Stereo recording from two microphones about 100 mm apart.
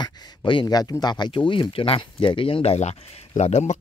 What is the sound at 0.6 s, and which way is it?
Speech, 40° left (ahead or behind).